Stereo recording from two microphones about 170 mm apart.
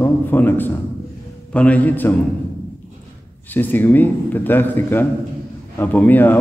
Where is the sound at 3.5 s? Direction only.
10° left (ahead or behind).